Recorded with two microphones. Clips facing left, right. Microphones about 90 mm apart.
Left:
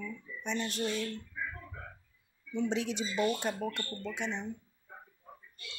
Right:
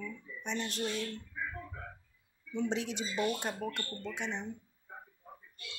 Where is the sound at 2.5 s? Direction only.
35° right (ahead or behind).